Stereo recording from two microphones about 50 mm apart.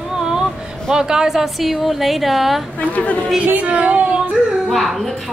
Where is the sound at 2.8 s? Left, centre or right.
Left.